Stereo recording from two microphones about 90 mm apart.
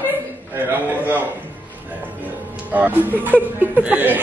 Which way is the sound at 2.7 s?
20° right (ahead or behind).